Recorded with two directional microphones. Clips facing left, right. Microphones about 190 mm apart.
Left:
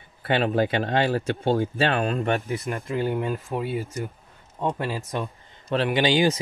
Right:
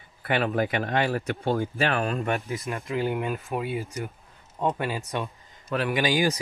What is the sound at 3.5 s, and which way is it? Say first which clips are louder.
Speech: left 1 dB; 30° left (ahead or behind).